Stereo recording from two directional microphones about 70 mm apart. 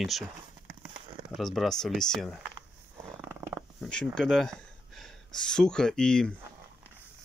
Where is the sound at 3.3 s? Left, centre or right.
Right.